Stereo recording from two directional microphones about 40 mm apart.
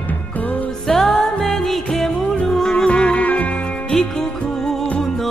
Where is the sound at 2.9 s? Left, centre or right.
Left.